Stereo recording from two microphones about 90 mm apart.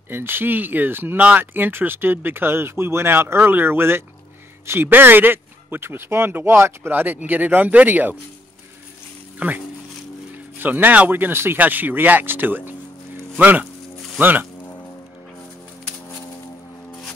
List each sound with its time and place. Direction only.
0.1 s speech: 25° right (ahead or behind)
9.4 s speech: 15° right (ahead or behind)